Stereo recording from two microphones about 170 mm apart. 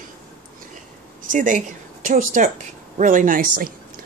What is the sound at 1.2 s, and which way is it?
Speech, 50° right (ahead or behind).